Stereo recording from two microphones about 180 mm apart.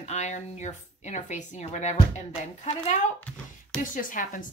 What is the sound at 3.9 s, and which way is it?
Speech, 50° left (ahead or behind).